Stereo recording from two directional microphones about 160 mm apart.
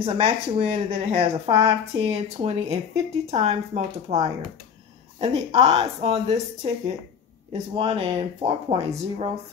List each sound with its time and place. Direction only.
0.0 s speech: 35° right (ahead or behind)